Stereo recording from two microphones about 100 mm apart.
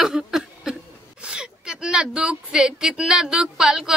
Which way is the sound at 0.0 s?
5° right (ahead or behind).